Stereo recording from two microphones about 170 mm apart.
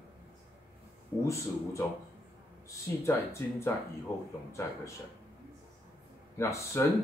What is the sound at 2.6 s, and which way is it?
Speech, 15° left (ahead or behind).